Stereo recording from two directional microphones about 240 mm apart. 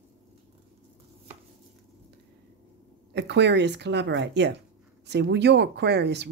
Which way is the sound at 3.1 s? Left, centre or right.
Right.